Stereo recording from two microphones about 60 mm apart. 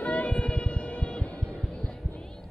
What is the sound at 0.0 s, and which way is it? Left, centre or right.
Music, left.